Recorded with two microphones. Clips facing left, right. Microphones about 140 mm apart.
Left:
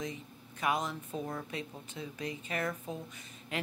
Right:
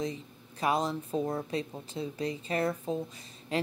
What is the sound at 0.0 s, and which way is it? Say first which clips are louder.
Speech: right 5 dB; 35° right (ahead or behind).